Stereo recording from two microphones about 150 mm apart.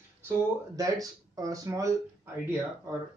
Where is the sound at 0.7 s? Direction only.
25° right (ahead or behind).